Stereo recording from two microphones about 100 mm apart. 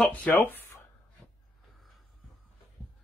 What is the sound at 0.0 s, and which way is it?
Speech, 15° left (ahead or behind).